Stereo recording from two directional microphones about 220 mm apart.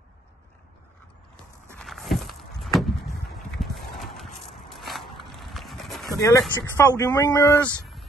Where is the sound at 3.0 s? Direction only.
45° left (ahead or behind).